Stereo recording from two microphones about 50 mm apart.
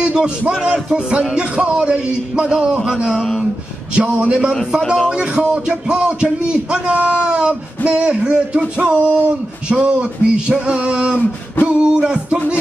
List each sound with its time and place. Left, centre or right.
0.0 s a man's voice: centre
3.2 s speech: centre
3.9 s a man's voice: right